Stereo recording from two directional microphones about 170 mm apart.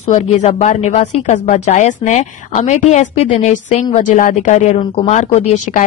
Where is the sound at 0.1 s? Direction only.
40° left (ahead or behind).